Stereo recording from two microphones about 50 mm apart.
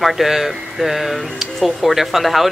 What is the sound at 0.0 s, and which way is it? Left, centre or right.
Speech, centre.